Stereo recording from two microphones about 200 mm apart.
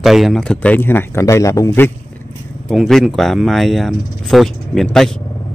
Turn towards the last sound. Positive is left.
turn(degrees=0)  # may be behind; listen again after turning